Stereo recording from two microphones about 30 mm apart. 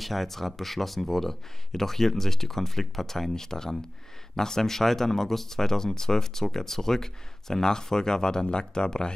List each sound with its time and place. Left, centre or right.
0.0 s speech: centre; by 9.1 s left